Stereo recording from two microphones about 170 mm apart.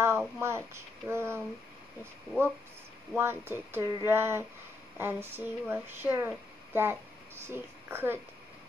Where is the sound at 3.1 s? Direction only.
15° right (ahead or behind).